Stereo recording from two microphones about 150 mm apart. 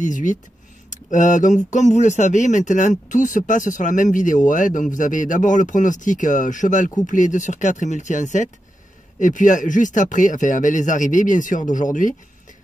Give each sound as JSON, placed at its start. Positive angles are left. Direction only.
{"t": 0.0, "sound": "speech", "side_deg": 60}